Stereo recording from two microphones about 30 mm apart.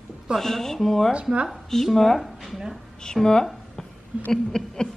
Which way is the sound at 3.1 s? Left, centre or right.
Centre.